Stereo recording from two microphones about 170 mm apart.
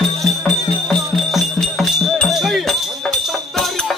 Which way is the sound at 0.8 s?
Centre (ahead or behind).